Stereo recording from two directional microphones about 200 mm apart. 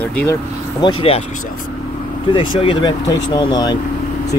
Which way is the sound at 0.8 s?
30° left (ahead or behind).